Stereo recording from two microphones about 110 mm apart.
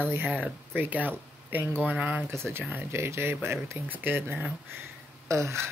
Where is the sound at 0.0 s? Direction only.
20° right (ahead or behind).